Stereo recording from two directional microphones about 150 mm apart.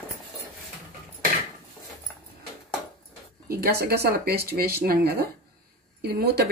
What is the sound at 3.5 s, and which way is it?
Speech, 90° right.